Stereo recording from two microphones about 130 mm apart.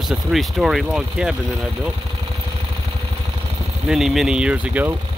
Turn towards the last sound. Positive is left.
turn(degrees=-10)  # may be behind; listen again after turning